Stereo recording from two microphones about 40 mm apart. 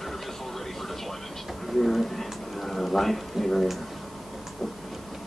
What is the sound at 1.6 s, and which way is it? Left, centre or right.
Speech, centre.